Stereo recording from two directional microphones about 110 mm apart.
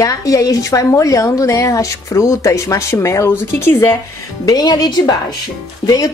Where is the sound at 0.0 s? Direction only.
30° left (ahead or behind).